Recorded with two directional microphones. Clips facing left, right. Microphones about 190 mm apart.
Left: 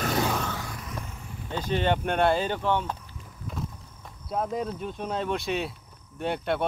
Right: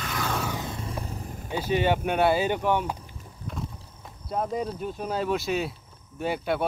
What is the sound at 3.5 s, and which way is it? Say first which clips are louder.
Clip-clop: even; centre (ahead or behind).